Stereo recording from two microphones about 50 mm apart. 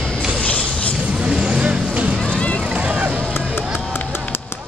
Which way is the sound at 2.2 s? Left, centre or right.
Left.